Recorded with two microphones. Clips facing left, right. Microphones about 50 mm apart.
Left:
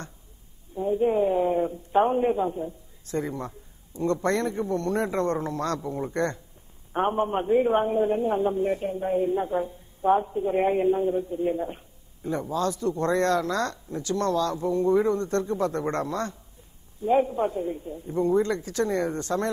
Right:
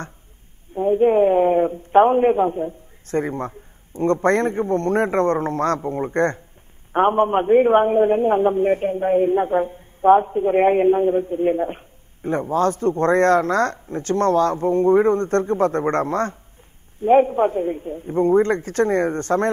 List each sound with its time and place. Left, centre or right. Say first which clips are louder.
0.7 s a man's voice: right 7 dB; right